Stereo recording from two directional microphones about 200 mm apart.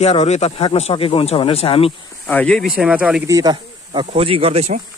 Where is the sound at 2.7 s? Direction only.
5° right (ahead or behind).